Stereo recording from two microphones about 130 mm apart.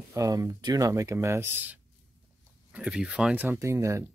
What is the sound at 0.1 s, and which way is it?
Speech, 25° right (ahead or behind).